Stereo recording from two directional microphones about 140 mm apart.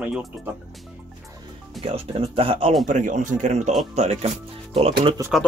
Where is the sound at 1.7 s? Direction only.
45° right (ahead or behind).